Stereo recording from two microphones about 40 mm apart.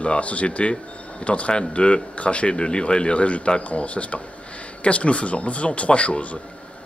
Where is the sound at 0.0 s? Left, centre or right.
Left.